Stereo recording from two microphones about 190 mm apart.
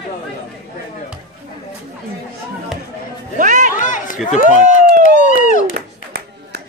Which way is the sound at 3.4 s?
40° right (ahead or behind).